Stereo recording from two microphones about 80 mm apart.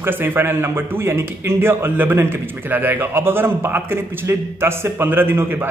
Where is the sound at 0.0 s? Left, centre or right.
Right.